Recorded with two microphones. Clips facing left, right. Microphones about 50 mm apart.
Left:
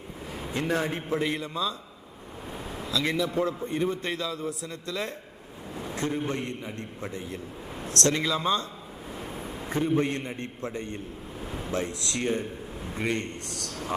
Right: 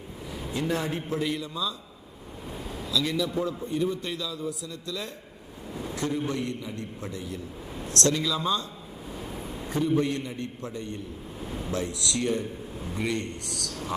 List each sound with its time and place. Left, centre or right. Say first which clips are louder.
0.3 s a man's voice: left 1 dB; left
2.5 s a sound: even; left
2.9 s a man's voice: even; left
9.1 s vehicle: even; left
9.7 s a man's voice: even; left
11.4 s a sound: right 1 dB; centre
11.7 s a man's voice: even; left